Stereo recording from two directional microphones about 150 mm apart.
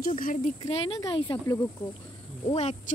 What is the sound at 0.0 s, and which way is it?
Speech, 65° left (ahead or behind).